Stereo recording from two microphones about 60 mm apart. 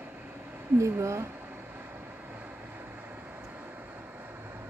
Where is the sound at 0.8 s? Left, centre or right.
Right.